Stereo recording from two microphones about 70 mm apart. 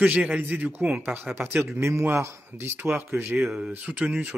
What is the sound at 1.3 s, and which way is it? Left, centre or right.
Speech, centre.